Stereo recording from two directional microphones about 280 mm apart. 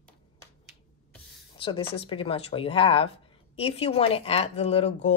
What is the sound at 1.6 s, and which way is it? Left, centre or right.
A woman's voice, centre.